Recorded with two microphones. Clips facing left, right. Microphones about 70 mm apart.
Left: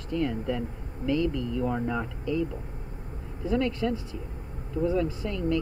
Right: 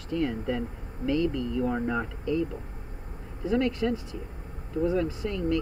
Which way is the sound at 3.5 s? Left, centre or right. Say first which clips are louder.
Right 1 dB; right.